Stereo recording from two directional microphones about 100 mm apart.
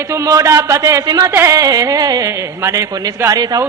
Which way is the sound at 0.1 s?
30° right (ahead or behind).